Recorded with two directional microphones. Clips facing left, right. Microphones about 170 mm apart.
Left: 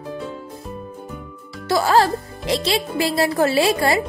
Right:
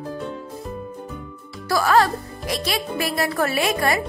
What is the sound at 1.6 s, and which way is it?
Speech, 25° left (ahead or behind).